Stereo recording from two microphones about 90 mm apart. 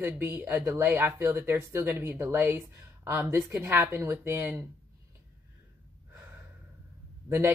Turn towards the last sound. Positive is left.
turn(degrees=-25)  # may be behind; listen again after turning